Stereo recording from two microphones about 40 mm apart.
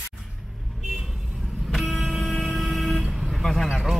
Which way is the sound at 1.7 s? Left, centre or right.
Centre.